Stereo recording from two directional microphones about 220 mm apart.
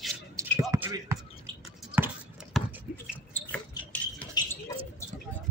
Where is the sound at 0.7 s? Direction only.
15° right (ahead or behind).